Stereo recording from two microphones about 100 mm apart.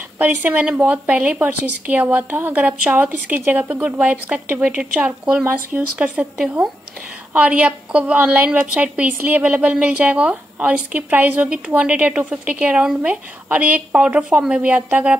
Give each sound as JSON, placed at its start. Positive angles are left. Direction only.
{"t": 0.2, "sound": "a woman's voice", "side_deg": -15}